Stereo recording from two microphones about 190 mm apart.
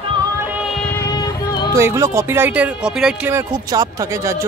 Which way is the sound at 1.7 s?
15° right (ahead or behind).